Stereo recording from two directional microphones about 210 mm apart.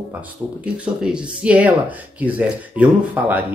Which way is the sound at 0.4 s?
Centre (ahead or behind).